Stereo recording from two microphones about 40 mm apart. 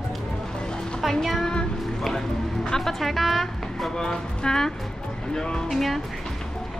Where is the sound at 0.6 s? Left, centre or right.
Centre.